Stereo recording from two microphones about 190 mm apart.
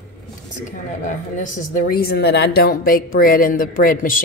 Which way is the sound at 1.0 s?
40° left (ahead or behind).